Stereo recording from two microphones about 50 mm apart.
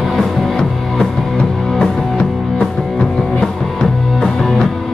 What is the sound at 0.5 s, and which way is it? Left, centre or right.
Music, centre.